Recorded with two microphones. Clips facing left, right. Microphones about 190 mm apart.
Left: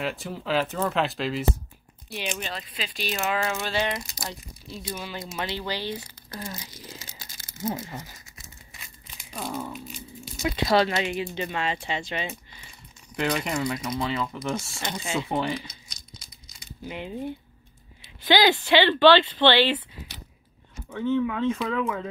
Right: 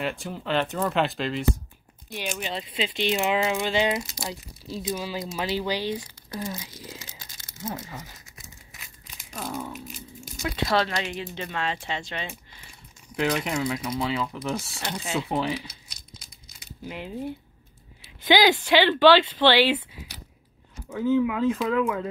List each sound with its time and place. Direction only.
0.0 s speech: centre (ahead or behind)
2.5 s speech: 25° right (ahead or behind); by 6.7 s 5° right (ahead or behind)
8.7 s tearing: centre (ahead or behind)
10.4 s speech: 10° left (ahead or behind)
16.8 s speech: centre (ahead or behind)
18.3 s speech: 10° right (ahead or behind)